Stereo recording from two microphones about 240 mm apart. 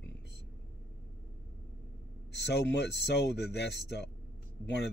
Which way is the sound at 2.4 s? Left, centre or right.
Left.